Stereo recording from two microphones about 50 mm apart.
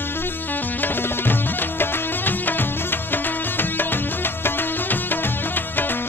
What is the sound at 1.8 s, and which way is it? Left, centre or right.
Music, left.